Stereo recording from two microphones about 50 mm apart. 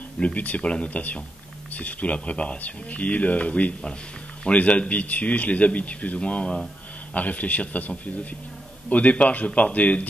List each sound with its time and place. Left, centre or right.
0.2 s speech: left